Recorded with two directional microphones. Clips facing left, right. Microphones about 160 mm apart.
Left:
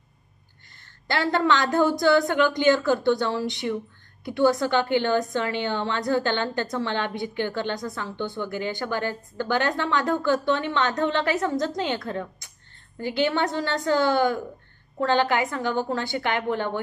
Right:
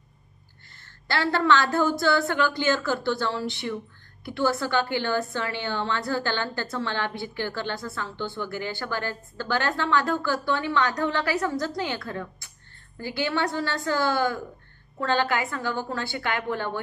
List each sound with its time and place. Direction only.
1.0 s a woman's voice: 15° left (ahead or behind)